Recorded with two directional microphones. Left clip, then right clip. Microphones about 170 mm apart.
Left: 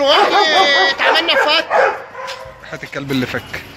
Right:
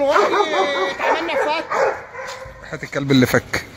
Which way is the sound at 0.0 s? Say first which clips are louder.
Left 4 dB; 10° right (ahead or behind).